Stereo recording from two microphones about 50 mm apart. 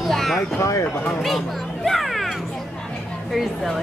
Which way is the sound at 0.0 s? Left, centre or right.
Centre.